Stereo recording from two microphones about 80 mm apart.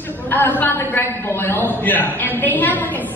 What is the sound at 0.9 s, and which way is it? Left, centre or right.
A woman's voice, left.